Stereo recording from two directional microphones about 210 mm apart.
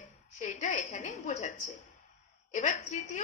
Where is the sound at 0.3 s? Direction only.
35° left (ahead or behind).